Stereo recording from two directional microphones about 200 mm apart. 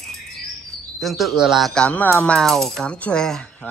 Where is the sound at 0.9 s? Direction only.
Centre (ahead or behind).